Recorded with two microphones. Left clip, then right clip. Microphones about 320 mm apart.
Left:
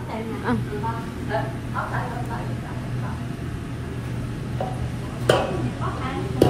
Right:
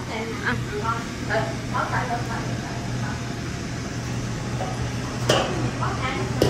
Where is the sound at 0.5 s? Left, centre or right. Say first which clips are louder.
Left 1 dB; centre.